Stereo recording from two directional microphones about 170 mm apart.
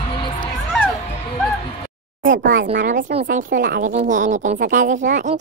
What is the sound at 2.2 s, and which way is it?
Speech, 50° right (ahead or behind).